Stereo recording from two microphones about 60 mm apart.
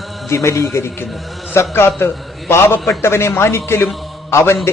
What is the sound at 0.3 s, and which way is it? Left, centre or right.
A man's voice, left.